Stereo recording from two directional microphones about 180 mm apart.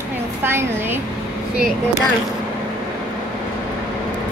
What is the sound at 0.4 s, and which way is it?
Speech, 10° right (ahead or behind).